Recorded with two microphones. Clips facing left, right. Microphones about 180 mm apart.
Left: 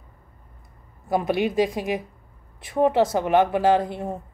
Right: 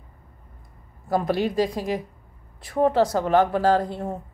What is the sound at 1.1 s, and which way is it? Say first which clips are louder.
Speech: left 1 dB; 20° left (ahead or behind).